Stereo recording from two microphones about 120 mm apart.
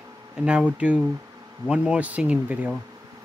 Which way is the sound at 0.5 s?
10° right (ahead or behind).